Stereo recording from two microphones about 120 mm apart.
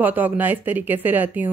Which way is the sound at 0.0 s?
15° right (ahead or behind).